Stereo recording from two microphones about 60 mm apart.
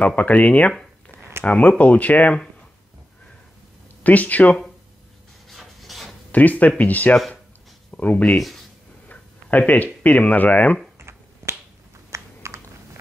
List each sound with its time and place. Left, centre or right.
0.0 s speech: left
4.0 s speech: left
5.5 s rub: centre
6.3 s speech: left
8.4 s speech: centre
9.1 s speech: left
11.0 s finger snapping: right
12.1 s a sound: right